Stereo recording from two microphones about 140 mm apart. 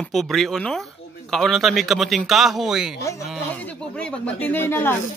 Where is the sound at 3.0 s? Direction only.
20° left (ahead or behind).